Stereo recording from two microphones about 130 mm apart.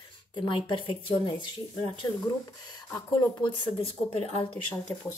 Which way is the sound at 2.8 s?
30° left (ahead or behind).